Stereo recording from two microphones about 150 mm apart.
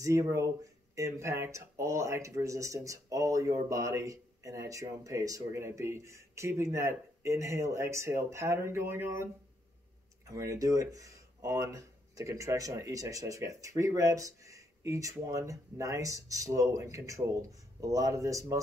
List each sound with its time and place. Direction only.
0.0 s speech: 20° right (ahead or behind)